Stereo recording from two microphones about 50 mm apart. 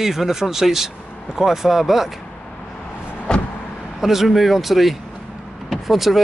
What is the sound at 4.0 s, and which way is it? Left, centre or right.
Speech, centre.